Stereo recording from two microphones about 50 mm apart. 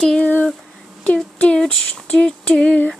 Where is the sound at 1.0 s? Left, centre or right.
Left.